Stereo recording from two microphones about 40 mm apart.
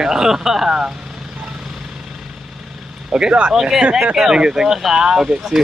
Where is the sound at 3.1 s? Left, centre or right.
Right.